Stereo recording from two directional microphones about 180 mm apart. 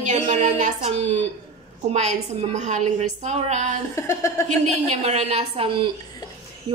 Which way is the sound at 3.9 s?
15° left (ahead or behind).